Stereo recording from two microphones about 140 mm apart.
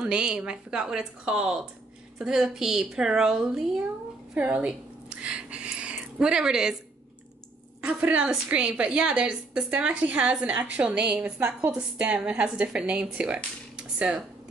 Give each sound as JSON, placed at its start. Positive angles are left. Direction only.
{"t": 0.0, "sound": "a woman's voice", "side_deg": -5}
{"t": 7.8, "sound": "a woman's voice", "side_deg": -10}
{"t": 13.7, "sound": "a sound", "side_deg": -5}